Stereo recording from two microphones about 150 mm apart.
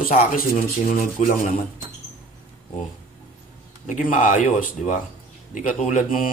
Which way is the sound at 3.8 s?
55° left (ahead or behind).